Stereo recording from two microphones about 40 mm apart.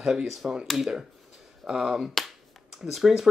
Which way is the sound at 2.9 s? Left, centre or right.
Centre.